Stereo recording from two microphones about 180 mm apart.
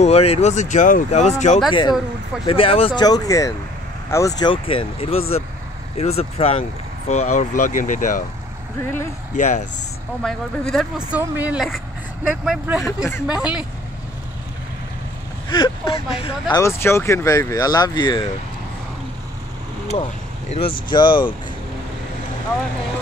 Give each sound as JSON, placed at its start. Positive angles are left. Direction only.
{"t": 0.0, "sound": "speech", "side_deg": 35}
{"t": 1.7, "sound": "speech", "side_deg": 25}
{"t": 9.3, "sound": "speech", "side_deg": 40}
{"t": 10.2, "sound": "speech", "side_deg": 5}
{"t": 15.5, "sound": "speech", "side_deg": 30}
{"t": 16.5, "sound": "speech", "side_deg": 15}
{"t": 19.9, "sound": "speech", "side_deg": 35}